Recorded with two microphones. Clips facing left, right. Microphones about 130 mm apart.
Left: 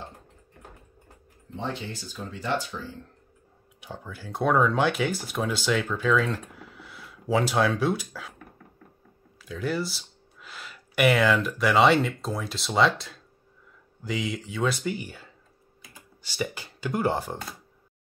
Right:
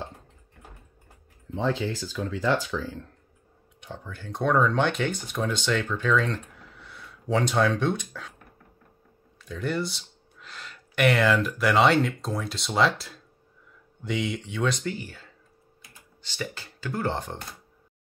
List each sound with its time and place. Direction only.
1.5 s speech: 90° right
3.8 s speech: 5° left (ahead or behind)
9.4 s speech: centre (ahead or behind)